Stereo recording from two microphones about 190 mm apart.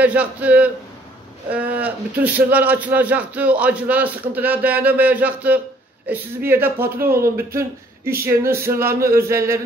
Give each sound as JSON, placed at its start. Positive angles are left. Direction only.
{"t": 0.0, "sound": "a man's voice", "side_deg": -10}